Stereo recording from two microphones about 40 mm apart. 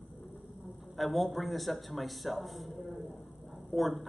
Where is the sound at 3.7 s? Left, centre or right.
Centre.